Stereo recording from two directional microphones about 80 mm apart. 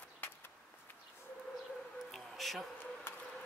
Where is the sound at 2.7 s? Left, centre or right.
Left.